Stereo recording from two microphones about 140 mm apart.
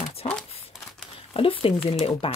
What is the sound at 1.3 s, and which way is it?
Speech, 40° left (ahead or behind).